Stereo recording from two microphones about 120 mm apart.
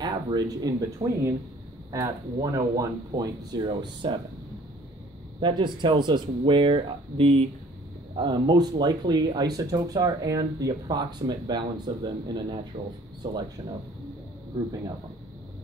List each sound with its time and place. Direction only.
0.0 s speech: 35° right (ahead or behind)
5.4 s speech: 40° right (ahead or behind)
8.2 s speech: 40° right (ahead or behind)